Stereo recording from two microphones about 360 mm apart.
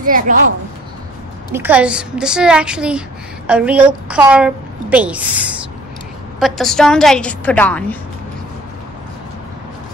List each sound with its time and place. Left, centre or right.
0.0 s a woman's voice: right
1.5 s a woman's voice: centre